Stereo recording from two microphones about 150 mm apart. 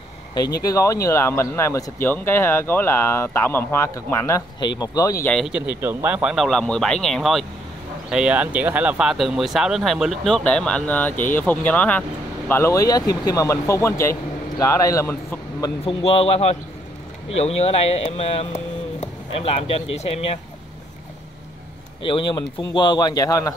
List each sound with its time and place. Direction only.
0.6 s speech: 20° left (ahead or behind)
5.2 s speech: 5° left (ahead or behind)
5.5 s speech: 10° right (ahead or behind); by 15.1 s 20° left (ahead or behind)
15.8 s speech: 40° left (ahead or behind)
22.0 s speech: 35° left (ahead or behind)